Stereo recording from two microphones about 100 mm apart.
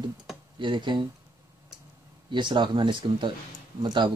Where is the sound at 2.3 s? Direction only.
50° right (ahead or behind).